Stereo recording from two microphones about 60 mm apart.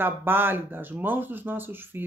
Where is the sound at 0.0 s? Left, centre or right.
Right.